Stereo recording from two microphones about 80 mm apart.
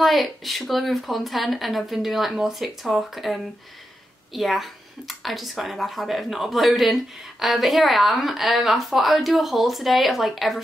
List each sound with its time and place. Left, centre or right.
0.0 s speech: centre